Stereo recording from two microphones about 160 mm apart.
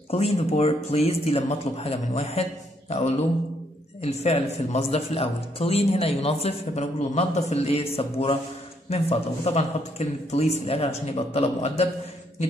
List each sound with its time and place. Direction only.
0.1 s speech: 40° left (ahead or behind)
4.0 s speech: 40° left (ahead or behind)